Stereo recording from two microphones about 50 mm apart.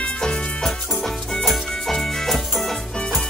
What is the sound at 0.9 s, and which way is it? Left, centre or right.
Music, centre.